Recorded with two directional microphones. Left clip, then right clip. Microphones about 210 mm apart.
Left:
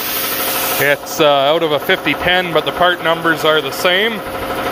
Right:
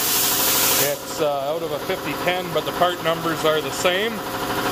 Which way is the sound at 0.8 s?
25° left (ahead or behind).